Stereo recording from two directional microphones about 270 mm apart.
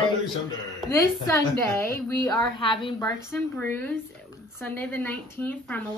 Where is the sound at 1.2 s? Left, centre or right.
Centre.